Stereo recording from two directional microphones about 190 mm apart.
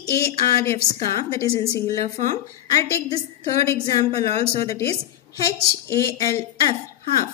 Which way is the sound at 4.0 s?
30° right (ahead or behind).